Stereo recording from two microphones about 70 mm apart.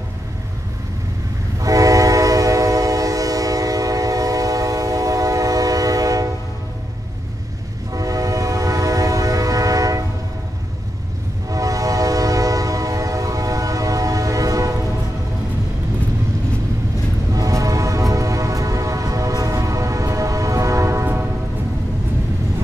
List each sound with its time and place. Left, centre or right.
1.6 s train: right
7.9 s train: right
11.4 s train: right
17.3 s music: right
21.0 s train horn: right